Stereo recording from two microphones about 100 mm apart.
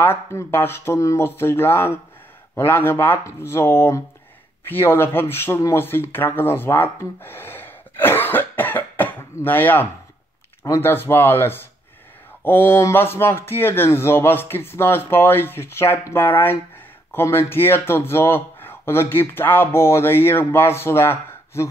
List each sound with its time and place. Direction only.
0.0 s speech: 25° left (ahead or behind)